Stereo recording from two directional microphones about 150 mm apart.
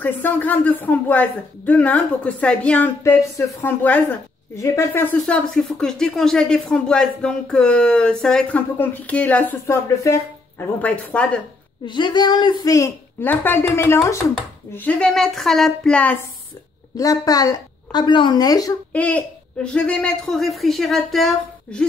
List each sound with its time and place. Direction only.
0.0 s speech: 10° left (ahead or behind)
11.8 s a woman's voice: 30° left (ahead or behind); by 16.2 s 10° left (ahead or behind)
16.9 s a woman's voice: 25° left (ahead or behind)
18.9 s speech: 10° left (ahead or behind)